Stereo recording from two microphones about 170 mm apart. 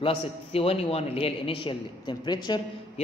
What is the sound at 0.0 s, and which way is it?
A man's voice, 35° left (ahead or behind).